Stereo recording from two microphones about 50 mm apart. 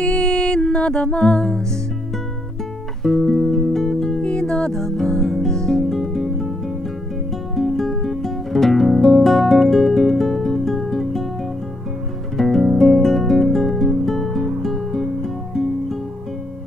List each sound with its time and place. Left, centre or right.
0.0 s music: centre
3.0 s music: centre
4.2 s music: centre
7.5 s guitar: centre
12.4 s music: centre